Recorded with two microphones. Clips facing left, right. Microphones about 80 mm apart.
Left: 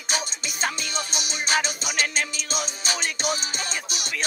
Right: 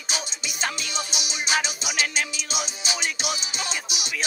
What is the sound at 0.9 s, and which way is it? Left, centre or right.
Music, left.